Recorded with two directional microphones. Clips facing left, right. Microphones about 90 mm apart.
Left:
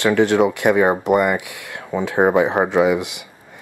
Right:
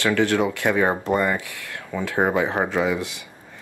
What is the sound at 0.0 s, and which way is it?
Speech, 20° left (ahead or behind).